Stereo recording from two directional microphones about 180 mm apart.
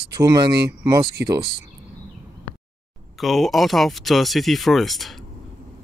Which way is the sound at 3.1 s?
Centre (ahead or behind).